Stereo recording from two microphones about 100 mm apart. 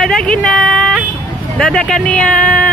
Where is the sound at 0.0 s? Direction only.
10° left (ahead or behind).